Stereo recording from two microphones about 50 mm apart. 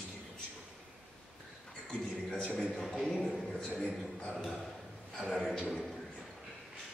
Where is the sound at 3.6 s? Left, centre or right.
Centre.